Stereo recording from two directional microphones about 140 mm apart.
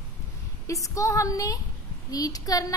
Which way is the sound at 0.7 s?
25° left (ahead or behind).